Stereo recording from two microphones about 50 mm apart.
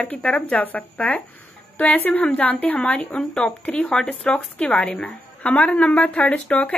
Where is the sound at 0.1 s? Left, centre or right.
Left.